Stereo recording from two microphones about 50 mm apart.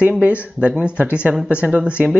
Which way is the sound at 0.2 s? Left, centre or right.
Right.